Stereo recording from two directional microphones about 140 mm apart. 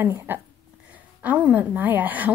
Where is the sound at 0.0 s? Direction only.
15° right (ahead or behind).